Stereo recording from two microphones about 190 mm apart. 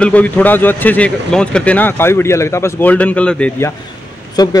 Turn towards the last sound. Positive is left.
turn(degrees=20)  # may be behind; listen again after turning